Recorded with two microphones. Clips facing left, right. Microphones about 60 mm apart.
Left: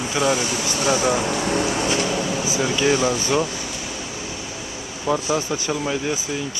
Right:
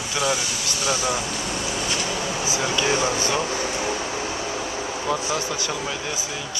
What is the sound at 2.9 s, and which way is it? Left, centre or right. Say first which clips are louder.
Speech: left 4 dB; right.